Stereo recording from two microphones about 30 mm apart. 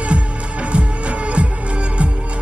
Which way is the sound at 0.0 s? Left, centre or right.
Right.